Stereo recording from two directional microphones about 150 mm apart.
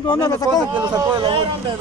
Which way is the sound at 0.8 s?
25° right (ahead or behind).